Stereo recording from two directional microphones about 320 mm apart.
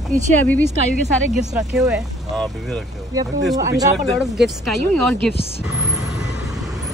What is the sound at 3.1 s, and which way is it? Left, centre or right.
Speech, centre.